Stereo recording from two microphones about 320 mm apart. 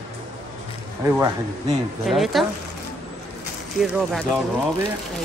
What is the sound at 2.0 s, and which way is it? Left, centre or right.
Speech, centre.